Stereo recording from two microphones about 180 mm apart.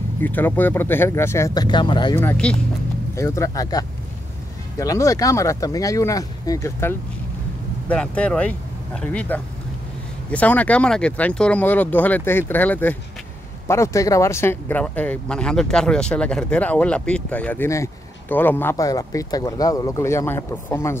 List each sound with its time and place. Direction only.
0.2 s speech: 10° left (ahead or behind); by 2.1 s 25° left (ahead or behind)
2.1 s speech: 10° left (ahead or behind)